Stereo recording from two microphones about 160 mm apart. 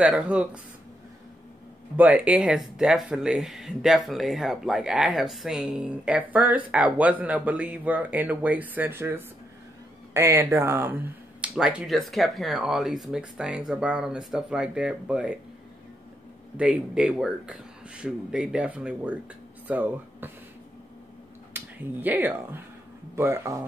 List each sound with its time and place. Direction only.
0.0 s speech: 5° right (ahead or behind)
2.0 s speech: 10° right (ahead or behind)
16.5 s speech: 5° right (ahead or behind)
21.5 s speech: 10° right (ahead or behind)